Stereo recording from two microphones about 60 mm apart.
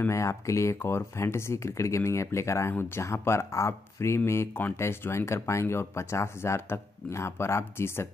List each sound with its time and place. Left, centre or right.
0.1 s speech: left